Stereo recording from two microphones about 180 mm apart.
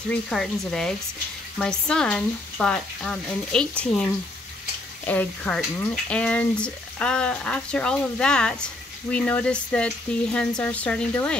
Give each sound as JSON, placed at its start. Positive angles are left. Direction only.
{"t": 0.1, "sound": "speech", "side_deg": 0}
{"t": 5.0, "sound": "speech", "side_deg": 10}
{"t": 9.1, "sound": "frying", "side_deg": 5}